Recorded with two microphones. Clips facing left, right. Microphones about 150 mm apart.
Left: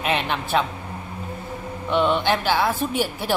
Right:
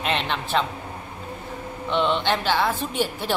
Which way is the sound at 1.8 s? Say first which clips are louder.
Left 2 dB; 10° left (ahead or behind).